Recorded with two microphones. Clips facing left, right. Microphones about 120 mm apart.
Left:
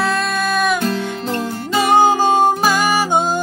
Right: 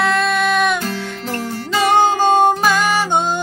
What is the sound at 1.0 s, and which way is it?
Music, 20° left (ahead or behind).